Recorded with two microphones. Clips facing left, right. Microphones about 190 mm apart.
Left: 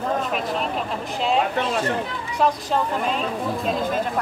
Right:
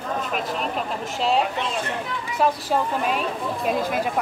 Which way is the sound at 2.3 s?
5° right (ahead or behind).